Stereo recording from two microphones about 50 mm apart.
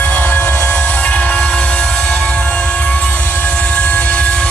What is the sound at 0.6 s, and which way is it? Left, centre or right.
Train, left.